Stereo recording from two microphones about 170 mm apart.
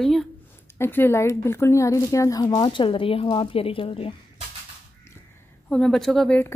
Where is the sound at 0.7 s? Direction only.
15° left (ahead or behind); by 4.2 s 35° left (ahead or behind).